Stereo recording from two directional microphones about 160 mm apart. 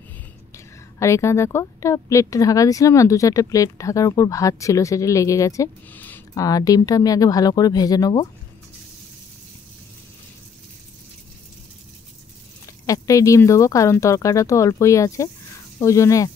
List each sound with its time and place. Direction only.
0.9 s a woman's voice: 15° left (ahead or behind)
12.8 s a woman's voice: 20° left (ahead or behind)